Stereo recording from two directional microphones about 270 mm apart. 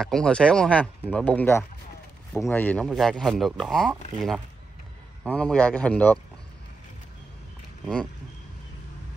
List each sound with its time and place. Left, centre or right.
0.0 s speech: centre
5.2 s speech: centre
7.8 s speech: centre